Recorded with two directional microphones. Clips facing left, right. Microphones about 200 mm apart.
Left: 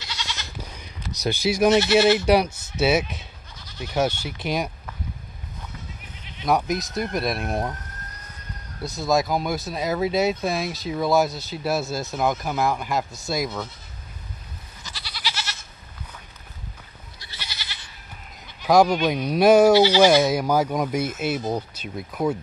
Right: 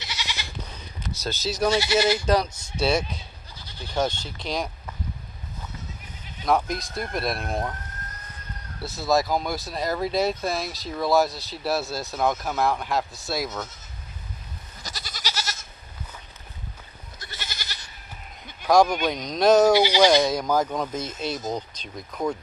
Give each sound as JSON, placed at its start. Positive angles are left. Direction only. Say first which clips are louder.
{"t": 0.0, "sound": "goat", "louder": "left 1 dB", "side_deg": -20}
{"t": 1.1, "sound": "speech", "louder": "left 6 dB", "side_deg": 15}
{"t": 2.0, "sound": "speech", "louder": "left 5 dB", "side_deg": 25}
{"t": 2.2, "sound": "speech", "louder": "left 3 dB", "side_deg": 10}
{"t": 3.5, "sound": "bleat", "louder": "left 5 dB", "side_deg": -30}
{"t": 3.9, "sound": "speech", "louder": "left 2 dB", "side_deg": 10}
{"t": 6.4, "sound": "speech", "louder": "left 1 dB", "side_deg": 0}
{"t": 8.8, "sound": "speech", "louder": "left 1 dB", "side_deg": 0}
{"t": 14.8, "sound": "goat", "louder": "right 1 dB", "side_deg": -40}
{"t": 17.2, "sound": "goat", "louder": "right 2 dB", "side_deg": -50}
{"t": 18.6, "sound": "a sound", "louder": "left 1 dB", "side_deg": 5}
{"t": 19.0, "sound": "speech", "louder": "left 3 dB", "side_deg": 10}
{"t": 19.7, "sound": "speech", "louder": "left 3 dB", "side_deg": -15}
{"t": 20.0, "sound": "speech", "louder": "left 2 dB", "side_deg": 5}